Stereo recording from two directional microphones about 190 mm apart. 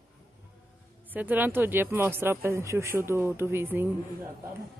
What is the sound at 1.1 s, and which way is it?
Speech, 10° right (ahead or behind).